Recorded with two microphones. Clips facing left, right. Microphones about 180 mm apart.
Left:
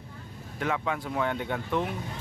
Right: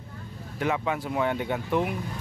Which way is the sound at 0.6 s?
5° right (ahead or behind).